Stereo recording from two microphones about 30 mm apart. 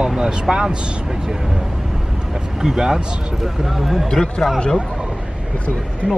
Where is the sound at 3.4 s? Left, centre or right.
Centre.